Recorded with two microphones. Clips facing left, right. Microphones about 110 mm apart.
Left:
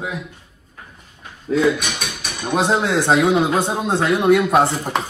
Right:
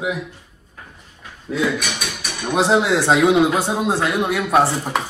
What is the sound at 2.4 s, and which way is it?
Speech, 10° left (ahead or behind).